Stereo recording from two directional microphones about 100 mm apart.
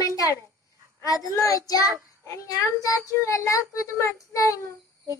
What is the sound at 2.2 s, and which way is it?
Child singing, 30° left (ahead or behind).